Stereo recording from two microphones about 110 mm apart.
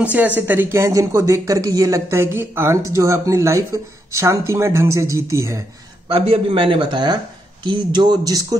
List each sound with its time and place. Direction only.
0.0 s speech: 15° right (ahead or behind)
6.1 s a man's voice: 60° right (ahead or behind); by 8.5 s 35° right (ahead or behind)